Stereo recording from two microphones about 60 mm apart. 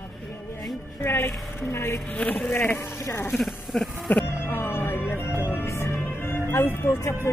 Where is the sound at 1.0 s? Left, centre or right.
Left.